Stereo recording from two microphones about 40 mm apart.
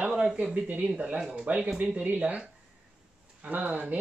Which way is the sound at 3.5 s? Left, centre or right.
Right.